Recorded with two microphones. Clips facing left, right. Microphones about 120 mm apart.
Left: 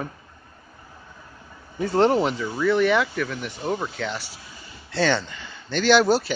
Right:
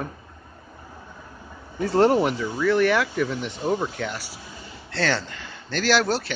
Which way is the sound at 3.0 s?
15° right (ahead or behind).